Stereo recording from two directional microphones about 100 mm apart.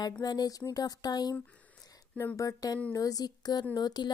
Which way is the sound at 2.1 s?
30° left (ahead or behind).